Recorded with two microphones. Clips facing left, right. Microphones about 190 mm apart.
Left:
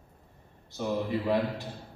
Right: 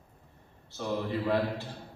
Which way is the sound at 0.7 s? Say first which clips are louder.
Left 2 dB; 15° left (ahead or behind).